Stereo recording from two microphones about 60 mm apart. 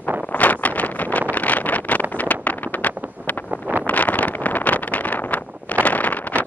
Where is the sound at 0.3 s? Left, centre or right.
Left.